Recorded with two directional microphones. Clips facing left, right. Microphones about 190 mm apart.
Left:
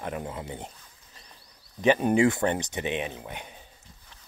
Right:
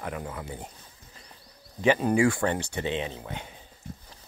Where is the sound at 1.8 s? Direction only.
20° left (ahead or behind).